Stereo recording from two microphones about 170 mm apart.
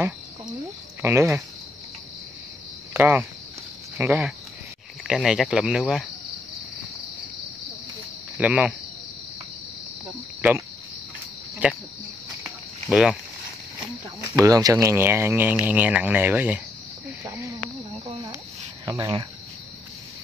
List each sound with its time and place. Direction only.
1.0 s speech: 15° right (ahead or behind)
2.9 s speech: 10° right (ahead or behind)
8.4 s speech: 10° right (ahead or behind)
11.6 s speech: 10° right (ahead or behind)
12.9 s speech: 5° right (ahead or behind)
14.3 s speech: 20° right (ahead or behind)
17.2 s snake: 15° right (ahead or behind)
18.0 s cricket: 20° right (ahead or behind)
18.9 s speech: 25° right (ahead or behind)